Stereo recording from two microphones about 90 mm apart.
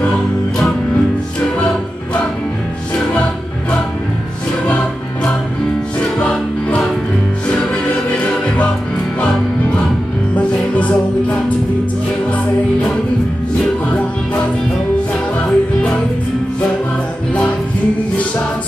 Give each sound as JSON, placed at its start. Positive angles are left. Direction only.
{"t": 5.9, "sound": "music", "side_deg": 15}
{"t": 10.3, "sound": "music", "side_deg": 15}
{"t": 15.4, "sound": "music", "side_deg": 10}